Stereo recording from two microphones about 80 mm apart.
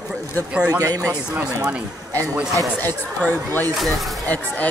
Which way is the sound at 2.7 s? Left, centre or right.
Left.